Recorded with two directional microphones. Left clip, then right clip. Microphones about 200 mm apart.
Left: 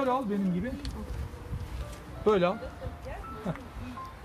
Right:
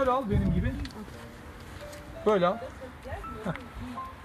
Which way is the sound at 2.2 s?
20° left (ahead or behind).